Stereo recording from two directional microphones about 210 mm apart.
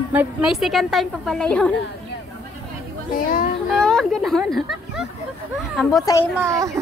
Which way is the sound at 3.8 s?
5° left (ahead or behind).